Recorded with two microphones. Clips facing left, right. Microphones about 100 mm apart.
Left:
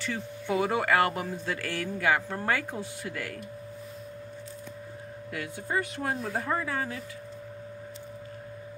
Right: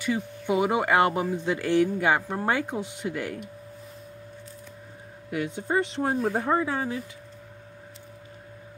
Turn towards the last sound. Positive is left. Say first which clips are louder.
# right 5 dB
turn(degrees=-25)  # may be behind; listen again after turning